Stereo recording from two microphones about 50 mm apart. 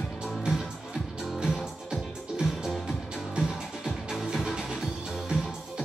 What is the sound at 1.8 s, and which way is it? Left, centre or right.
Music, centre.